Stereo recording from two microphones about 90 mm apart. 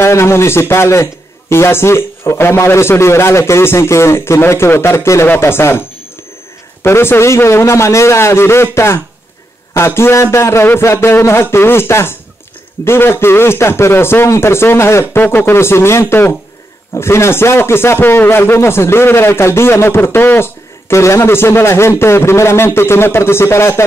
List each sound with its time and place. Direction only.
0.0 s a man's voice: 30° left (ahead or behind)